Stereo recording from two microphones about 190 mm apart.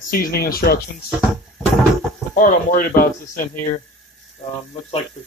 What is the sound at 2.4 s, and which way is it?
Speech, 45° left (ahead or behind).